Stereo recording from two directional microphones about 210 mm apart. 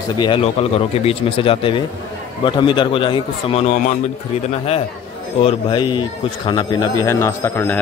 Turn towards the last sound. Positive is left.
turn(degrees=10)  # may be behind; listen again after turning